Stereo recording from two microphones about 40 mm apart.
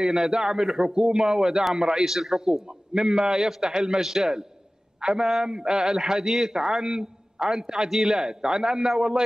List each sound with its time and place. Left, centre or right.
0.0 s a man's voice: centre
5.4 s a sound: centre
5.8 s a man's voice: centre
8.3 s a man's voice: centre